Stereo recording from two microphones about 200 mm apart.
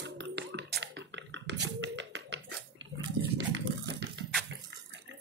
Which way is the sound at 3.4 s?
65° right (ahead or behind).